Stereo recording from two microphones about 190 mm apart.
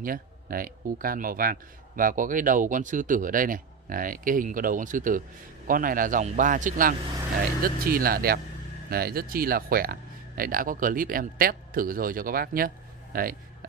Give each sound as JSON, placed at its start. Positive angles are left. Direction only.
{"t": 0.0, "sound": "speech", "side_deg": -50}